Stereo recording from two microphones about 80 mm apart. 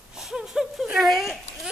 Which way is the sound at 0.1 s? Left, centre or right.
Centre.